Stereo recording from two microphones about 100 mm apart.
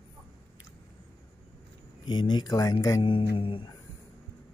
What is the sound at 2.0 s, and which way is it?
Speech, 50° left (ahead or behind).